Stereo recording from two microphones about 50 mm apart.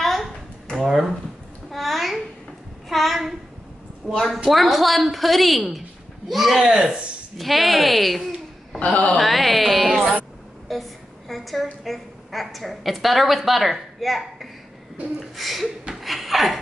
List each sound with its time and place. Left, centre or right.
0.0 s a sound: centre
0.7 s a woman's voice: centre
1.7 s a sound: centre
4.5 s a woman's voice: centre
6.8 s speech: right
7.3 s a woman's voice: centre
8.7 s speech: left
9.2 s a woman's voice: centre
15.9 s laughter: centre